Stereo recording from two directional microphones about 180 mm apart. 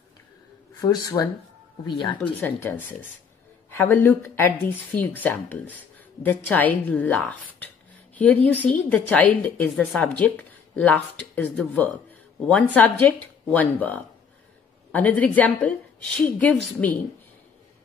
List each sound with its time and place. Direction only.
0.7 s speech: 15° left (ahead or behind)
2.4 s speech: 10° left (ahead or behind)